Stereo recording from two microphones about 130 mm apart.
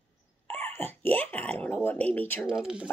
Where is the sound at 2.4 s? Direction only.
5° right (ahead or behind).